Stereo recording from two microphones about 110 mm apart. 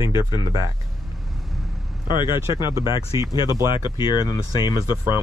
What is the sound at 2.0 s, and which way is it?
Speech, 45° left (ahead or behind).